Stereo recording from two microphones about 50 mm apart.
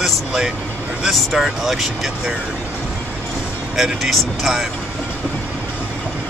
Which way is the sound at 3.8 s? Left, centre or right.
Centre.